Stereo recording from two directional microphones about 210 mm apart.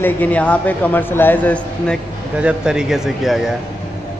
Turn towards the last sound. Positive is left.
turn(degrees=0)  # may be behind; listen again after turning